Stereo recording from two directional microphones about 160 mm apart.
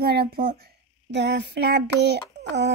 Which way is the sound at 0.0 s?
75° right (ahead or behind).